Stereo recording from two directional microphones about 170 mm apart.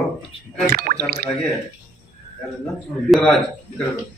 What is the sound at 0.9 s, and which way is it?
Drip, 60° right (ahead or behind).